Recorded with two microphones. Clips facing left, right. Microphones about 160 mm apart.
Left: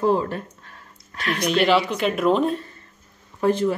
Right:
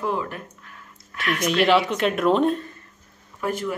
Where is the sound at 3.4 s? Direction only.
30° left (ahead or behind).